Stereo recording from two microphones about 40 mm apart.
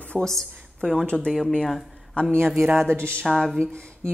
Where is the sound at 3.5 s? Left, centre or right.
Centre.